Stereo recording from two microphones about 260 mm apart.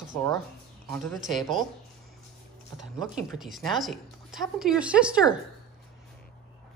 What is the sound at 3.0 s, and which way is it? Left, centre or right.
A man's voice, centre.